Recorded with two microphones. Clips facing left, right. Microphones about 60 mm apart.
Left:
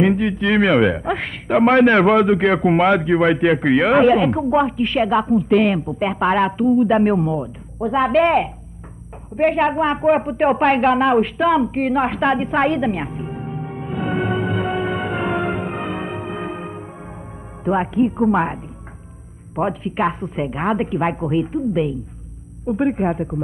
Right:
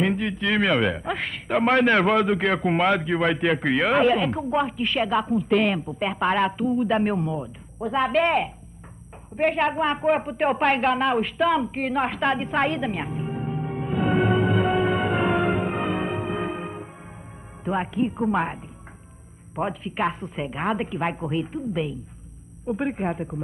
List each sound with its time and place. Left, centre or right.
0.0 s a woman's voice: left
9.6 s a woman's voice: left
11.7 s music: left; by 14.4 s centre
14.4 s music: centre
14.7 s music: centre
17.6 s speech: left
18.3 s a woman's voice: left
22.8 s a man's voice: left